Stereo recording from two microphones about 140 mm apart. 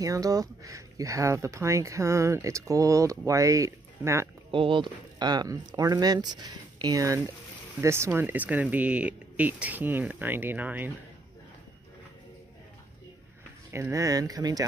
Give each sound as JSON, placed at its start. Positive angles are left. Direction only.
{"t": 0.0, "sound": "speech", "side_deg": -25}
{"t": 4.5, "sound": "speech", "side_deg": -35}
{"t": 13.7, "sound": "speech", "side_deg": -20}